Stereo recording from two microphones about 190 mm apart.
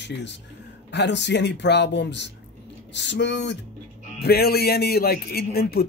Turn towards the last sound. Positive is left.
turn(degrees=55)  # may be behind; listen again after turning